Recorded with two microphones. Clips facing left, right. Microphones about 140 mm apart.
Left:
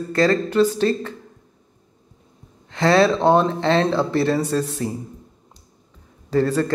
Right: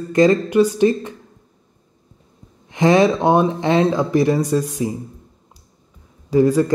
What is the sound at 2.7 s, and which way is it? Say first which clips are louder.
Speech: right 2 dB; 15° right (ahead or behind).